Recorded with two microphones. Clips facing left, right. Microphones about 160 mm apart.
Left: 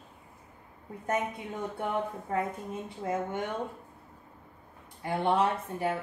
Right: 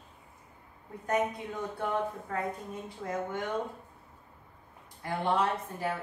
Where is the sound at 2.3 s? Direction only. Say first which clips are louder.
Left 3 dB; 20° left (ahead or behind).